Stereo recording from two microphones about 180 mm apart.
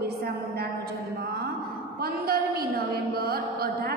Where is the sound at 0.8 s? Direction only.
60° right (ahead or behind).